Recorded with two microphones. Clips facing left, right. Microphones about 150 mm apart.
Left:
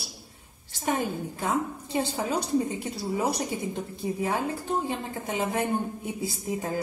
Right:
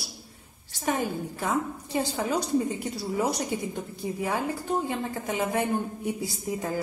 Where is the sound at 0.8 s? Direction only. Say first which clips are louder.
Even; 20° left (ahead or behind).